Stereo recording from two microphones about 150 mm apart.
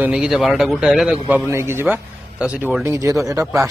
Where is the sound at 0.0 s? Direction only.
5° right (ahead or behind).